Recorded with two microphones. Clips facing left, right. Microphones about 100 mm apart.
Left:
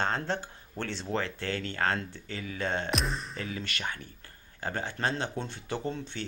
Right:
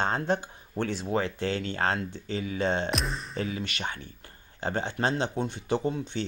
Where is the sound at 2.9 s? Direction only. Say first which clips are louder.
Even; centre (ahead or behind).